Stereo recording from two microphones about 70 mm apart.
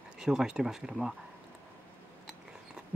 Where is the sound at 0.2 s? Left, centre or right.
Centre.